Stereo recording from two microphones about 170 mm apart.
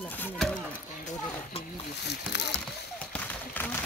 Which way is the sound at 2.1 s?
90° left.